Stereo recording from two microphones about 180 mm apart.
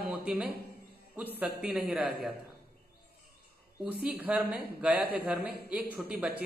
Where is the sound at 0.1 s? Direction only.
5° right (ahead or behind).